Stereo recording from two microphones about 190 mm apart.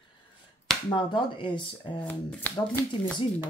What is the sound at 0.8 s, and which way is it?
Speech, 25° left (ahead or behind).